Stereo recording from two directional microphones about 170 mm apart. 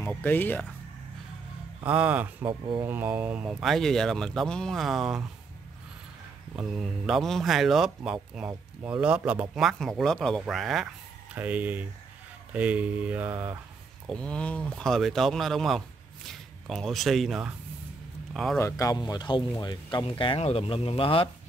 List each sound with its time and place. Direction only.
0.0 s speech: 10° left (ahead or behind)
1.8 s mantra: 10° right (ahead or behind)
2.8 s speech: 10° right (ahead or behind)
6.5 s speech: centre (ahead or behind)
11.3 s mantra: 10° right (ahead or behind)
14.0 s speech: 5° left (ahead or behind)
18.6 s speech: 20° left (ahead or behind)